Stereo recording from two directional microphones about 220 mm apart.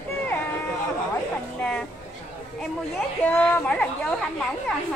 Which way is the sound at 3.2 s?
5° left (ahead or behind).